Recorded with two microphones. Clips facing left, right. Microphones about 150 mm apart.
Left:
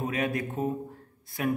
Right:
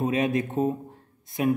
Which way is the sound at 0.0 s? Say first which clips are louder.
Right 5 dB; 20° right (ahead or behind).